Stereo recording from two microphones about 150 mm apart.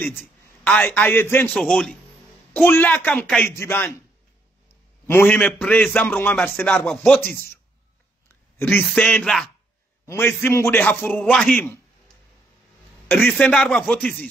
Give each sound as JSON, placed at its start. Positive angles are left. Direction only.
{"t": 0.0, "sound": "a man's voice", "side_deg": 10}
{"t": 1.5, "sound": "a man's voice", "side_deg": 0}
{"t": 5.0, "sound": "a man's voice", "side_deg": 15}
{"t": 8.8, "sound": "speech", "side_deg": 5}
{"t": 10.0, "sound": "a man's voice", "side_deg": 15}
{"t": 13.1, "sound": "a man's voice", "side_deg": 5}